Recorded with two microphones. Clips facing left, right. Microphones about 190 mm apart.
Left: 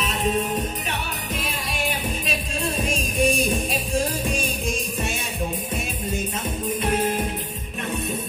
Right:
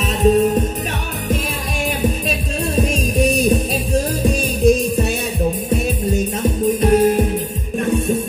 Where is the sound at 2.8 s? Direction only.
40° right (ahead or behind).